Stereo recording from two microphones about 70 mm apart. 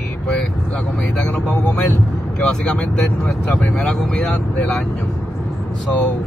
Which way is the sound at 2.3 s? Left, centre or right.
Centre.